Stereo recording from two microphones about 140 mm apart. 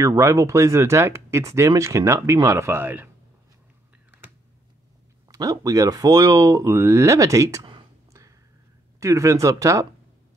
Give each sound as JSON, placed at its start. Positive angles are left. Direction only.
{"t": 0.0, "sound": "speech", "side_deg": -20}
{"t": 5.3, "sound": "speech", "side_deg": -25}
{"t": 8.1, "sound": "a sound", "side_deg": -20}
{"t": 9.0, "sound": "speech", "side_deg": -20}